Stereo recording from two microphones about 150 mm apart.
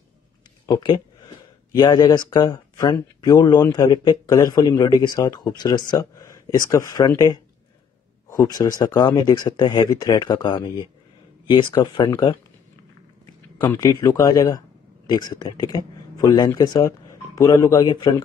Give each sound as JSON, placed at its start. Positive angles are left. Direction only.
{"t": 0.7, "sound": "speech", "side_deg": 30}
{"t": 13.6, "sound": "speech", "side_deg": 25}